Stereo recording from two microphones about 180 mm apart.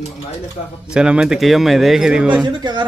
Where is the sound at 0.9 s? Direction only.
5° right (ahead or behind).